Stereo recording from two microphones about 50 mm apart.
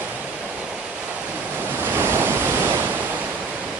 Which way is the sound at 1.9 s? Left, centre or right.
Right.